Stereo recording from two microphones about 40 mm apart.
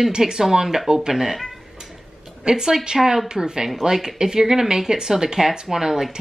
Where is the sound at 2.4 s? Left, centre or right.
Centre.